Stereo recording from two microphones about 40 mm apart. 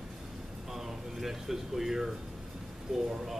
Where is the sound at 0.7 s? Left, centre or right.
Centre.